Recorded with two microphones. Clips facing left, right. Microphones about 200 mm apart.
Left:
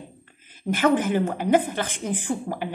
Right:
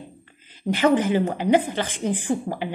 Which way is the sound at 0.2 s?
50° left (ahead or behind).